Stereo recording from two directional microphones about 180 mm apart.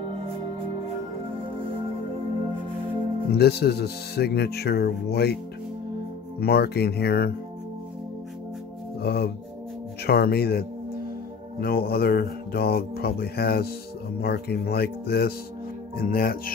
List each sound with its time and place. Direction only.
3.3 s speech: 65° left (ahead or behind)
6.4 s speech: 60° left (ahead or behind)
9.0 s music: 60° left (ahead or behind)
10.0 s speech: 60° left (ahead or behind)
11.6 s speech: 60° left (ahead or behind)